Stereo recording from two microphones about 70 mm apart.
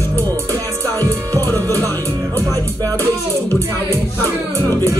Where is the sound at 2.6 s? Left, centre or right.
Right.